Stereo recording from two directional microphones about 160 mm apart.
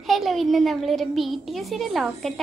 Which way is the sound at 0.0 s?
Centre (ahead or behind).